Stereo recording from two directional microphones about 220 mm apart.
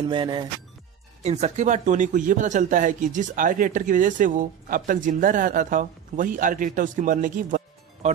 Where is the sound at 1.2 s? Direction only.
30° right (ahead or behind).